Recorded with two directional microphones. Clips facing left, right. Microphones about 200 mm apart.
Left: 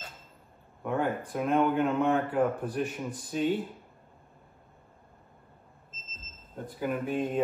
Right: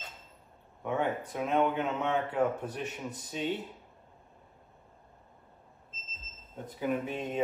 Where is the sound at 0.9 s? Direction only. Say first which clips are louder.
Left 2 dB; 5° left (ahead or behind).